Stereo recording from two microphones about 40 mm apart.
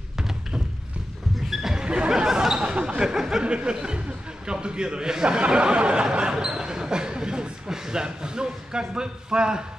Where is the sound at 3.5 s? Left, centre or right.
Right.